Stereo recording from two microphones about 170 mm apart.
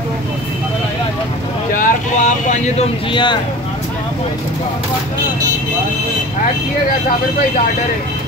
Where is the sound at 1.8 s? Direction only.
45° left (ahead or behind).